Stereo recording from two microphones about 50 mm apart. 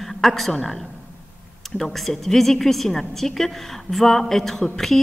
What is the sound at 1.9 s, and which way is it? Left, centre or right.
A woman's voice, centre.